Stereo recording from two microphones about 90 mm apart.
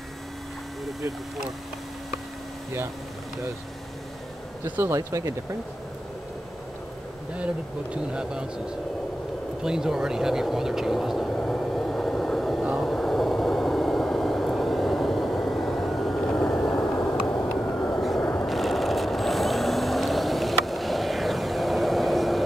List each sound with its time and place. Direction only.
4.6 s speech: 20° right (ahead or behind)
4.9 s speech: 35° right (ahead or behind)
7.3 s speech: 15° right (ahead or behind)
9.6 s vehicle: 5° right (ahead or behind)
16.7 s a sound: 30° left (ahead or behind)
17.7 s vehicle: 15° left (ahead or behind)
18.2 s vehicle: 25° left (ahead or behind)
18.5 s vehicle: centre (ahead or behind)